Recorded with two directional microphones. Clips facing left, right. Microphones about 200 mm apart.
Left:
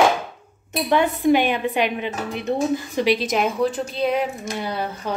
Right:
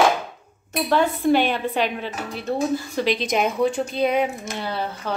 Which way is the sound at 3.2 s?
Centre (ahead or behind).